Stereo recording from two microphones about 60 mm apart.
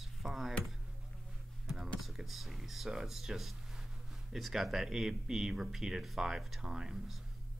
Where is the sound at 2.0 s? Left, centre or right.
Centre.